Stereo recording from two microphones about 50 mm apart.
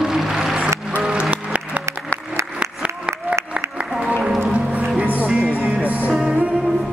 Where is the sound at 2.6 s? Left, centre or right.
Right.